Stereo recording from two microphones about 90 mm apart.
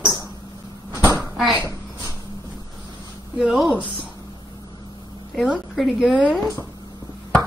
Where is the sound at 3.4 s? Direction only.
5° right (ahead or behind).